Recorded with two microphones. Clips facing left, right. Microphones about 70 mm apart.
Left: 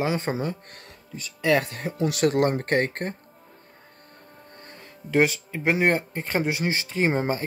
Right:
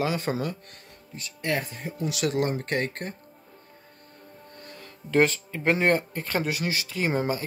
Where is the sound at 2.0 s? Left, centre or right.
Left.